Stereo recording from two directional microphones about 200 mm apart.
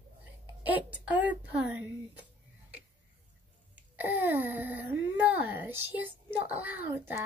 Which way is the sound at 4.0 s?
10° right (ahead or behind).